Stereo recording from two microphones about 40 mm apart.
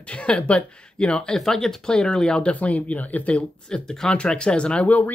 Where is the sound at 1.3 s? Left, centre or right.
Centre.